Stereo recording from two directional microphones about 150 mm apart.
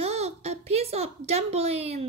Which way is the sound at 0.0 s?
45° right (ahead or behind).